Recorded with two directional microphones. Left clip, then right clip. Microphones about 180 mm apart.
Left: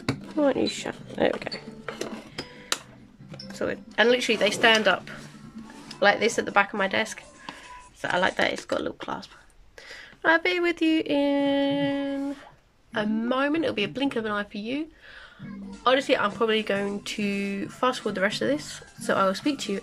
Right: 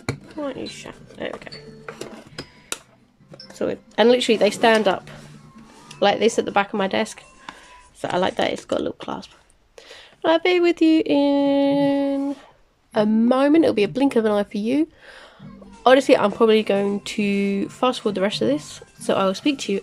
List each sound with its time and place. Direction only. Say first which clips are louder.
0.4 s speech: left 9 dB; 20° left (ahead or behind)
2.0 s a sound: even; centre (ahead or behind)
3.5 s a woman's voice: right 4 dB; 15° right (ahead or behind)
16.3 s speech: right 7 dB; 20° right (ahead or behind)